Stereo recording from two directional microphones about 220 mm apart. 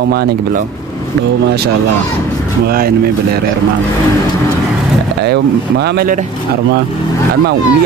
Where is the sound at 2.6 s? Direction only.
45° right (ahead or behind).